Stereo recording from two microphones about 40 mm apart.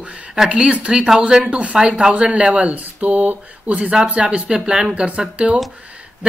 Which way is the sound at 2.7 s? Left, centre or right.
Right.